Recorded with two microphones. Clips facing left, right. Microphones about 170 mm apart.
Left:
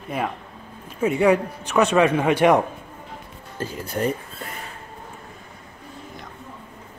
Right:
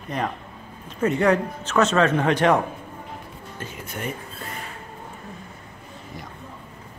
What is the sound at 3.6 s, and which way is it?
Speech, 35° left (ahead or behind).